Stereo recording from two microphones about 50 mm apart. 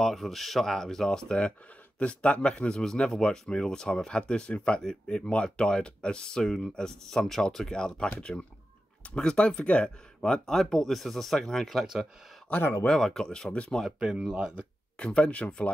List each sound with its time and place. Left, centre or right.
0.0 s speech: centre
10.4 s speech: centre
11.6 s speech: centre
12.9 s speech: centre
13.9 s speech: centre
15.0 s speech: left